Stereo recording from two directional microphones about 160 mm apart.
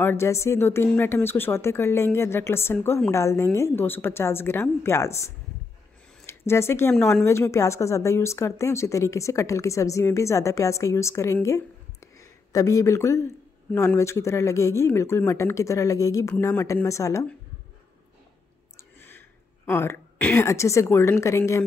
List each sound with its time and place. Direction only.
0.0 s a woman's voice: 15° left (ahead or behind)
18.8 s a woman's voice: 15° left (ahead or behind)